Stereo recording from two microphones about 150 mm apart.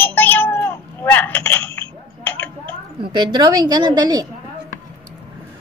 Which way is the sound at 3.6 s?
25° right (ahead or behind).